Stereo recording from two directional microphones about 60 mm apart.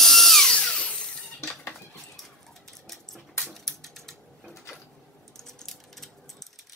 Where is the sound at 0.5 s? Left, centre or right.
Centre.